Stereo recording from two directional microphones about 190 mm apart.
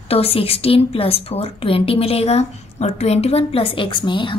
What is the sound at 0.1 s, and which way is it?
A woman's voice, 30° left (ahead or behind).